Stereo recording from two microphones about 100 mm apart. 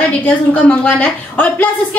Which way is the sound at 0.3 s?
15° left (ahead or behind).